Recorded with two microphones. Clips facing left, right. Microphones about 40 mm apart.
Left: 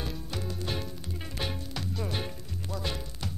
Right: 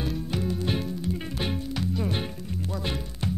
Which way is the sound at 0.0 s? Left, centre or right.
Centre.